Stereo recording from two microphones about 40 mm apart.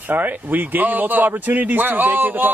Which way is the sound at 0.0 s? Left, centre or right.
Right.